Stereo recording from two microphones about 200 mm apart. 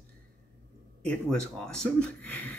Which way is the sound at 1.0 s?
5° left (ahead or behind).